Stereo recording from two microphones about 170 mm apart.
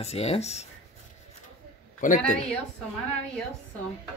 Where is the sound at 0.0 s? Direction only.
35° left (ahead or behind).